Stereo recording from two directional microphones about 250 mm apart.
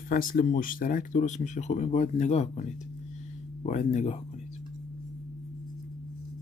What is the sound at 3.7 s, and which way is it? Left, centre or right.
Speech, left.